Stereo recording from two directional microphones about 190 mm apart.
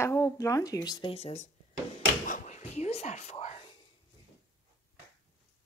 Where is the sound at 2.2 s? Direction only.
40° left (ahead or behind).